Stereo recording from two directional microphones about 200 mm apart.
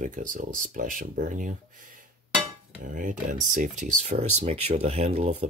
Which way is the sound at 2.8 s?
40° right (ahead or behind).